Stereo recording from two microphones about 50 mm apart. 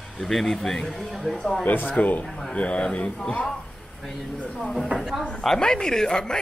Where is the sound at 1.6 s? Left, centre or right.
Left.